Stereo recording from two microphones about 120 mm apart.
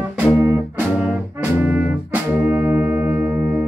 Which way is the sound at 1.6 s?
15° right (ahead or behind).